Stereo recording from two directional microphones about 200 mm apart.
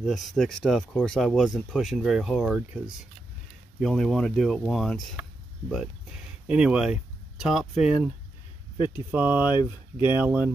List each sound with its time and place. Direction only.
0.0 s speech: centre (ahead or behind)
3.8 s speech: centre (ahead or behind)
6.4 s speech: 5° right (ahead or behind)
9.5 s speech: 25° left (ahead or behind)
10.0 s speech: 10° right (ahead or behind)